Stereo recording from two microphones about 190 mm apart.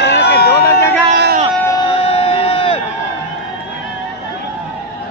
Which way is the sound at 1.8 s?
30° left (ahead or behind).